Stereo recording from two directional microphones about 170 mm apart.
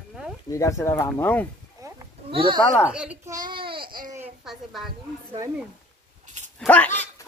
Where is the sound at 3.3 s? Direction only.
25° right (ahead or behind).